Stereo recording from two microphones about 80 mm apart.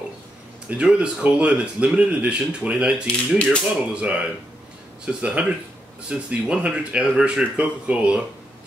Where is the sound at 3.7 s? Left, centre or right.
Centre.